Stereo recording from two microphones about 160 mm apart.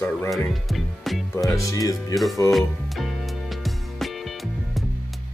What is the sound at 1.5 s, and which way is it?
Speech, 20° left (ahead or behind).